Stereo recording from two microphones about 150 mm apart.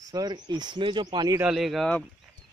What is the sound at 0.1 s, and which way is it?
Speech, 25° right (ahead or behind).